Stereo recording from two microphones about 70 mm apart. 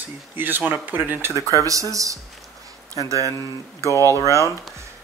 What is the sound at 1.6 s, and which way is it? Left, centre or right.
Speech, right.